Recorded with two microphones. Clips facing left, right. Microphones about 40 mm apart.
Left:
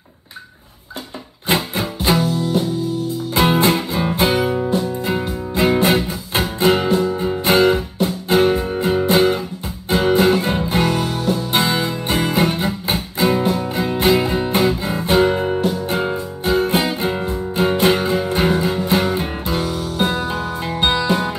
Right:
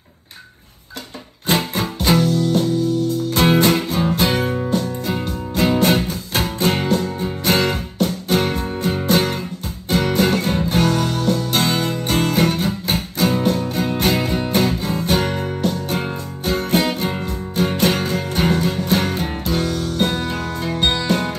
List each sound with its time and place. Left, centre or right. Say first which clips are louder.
1.5 s music: even; left
3.0 s music: right 3 dB; right
3.3 s music: even; left